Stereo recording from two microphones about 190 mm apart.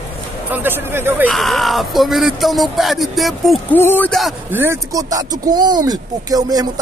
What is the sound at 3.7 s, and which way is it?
Speech, 10° left (ahead or behind).